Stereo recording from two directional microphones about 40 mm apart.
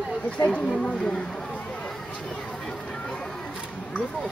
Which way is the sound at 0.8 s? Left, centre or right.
Centre.